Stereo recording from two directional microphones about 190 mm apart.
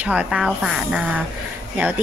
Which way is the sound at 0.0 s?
5° right (ahead or behind).